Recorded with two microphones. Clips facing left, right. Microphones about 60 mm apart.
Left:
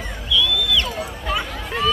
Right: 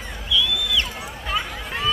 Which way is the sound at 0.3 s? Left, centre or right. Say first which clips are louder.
Left 2 dB; centre.